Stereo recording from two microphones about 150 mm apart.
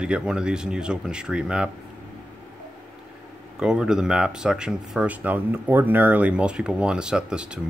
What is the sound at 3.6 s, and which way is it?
Speech, 5° right (ahead or behind).